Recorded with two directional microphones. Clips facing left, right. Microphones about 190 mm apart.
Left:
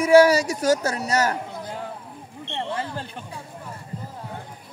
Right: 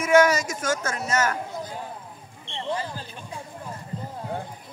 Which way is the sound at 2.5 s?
60° left (ahead or behind).